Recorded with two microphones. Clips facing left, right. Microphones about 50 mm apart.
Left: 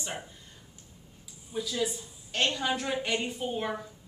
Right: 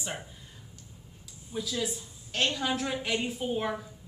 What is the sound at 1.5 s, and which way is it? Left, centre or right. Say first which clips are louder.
A woman's voice: left 1 dB; centre.